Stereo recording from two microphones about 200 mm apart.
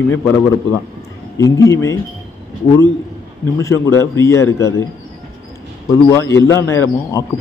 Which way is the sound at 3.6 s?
15° left (ahead or behind).